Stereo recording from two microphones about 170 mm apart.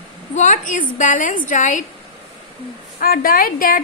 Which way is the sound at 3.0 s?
60° left (ahead or behind).